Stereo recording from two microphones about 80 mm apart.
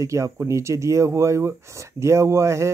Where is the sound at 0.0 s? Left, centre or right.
Right.